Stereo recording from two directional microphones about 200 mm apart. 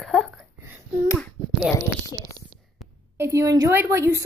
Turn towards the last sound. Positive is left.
turn(degrees=-15)  # may be behind; listen again after turning